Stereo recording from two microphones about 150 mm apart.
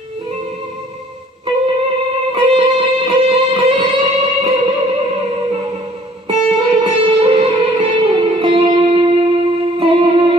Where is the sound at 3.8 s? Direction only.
35° right (ahead or behind).